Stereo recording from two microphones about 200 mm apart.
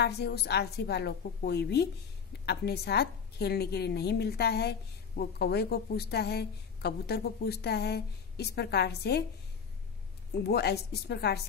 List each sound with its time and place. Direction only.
0.0 s a woman's voice: 55° left (ahead or behind)
10.4 s a woman's voice: 50° left (ahead or behind)